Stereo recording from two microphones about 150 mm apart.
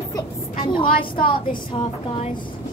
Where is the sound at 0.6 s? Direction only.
35° left (ahead or behind).